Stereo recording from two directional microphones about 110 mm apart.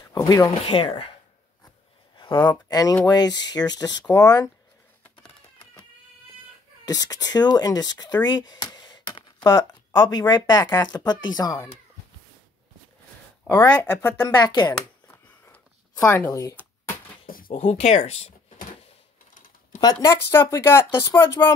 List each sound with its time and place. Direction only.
0.0 s a sound: 35° left (ahead or behind)
0.7 s speech: 45° left (ahead or behind)
2.7 s speech: 35° left (ahead or behind)
6.9 s speech: 35° left (ahead or behind)
13.5 s speech: 15° left (ahead or behind)
14.2 s speech: 40° left (ahead or behind)
15.0 s a sound: 20° left (ahead or behind)
17.6 s speech: 90° left; by 18.3 s 70° left (ahead or behind)
19.8 s speech: 35° left (ahead or behind)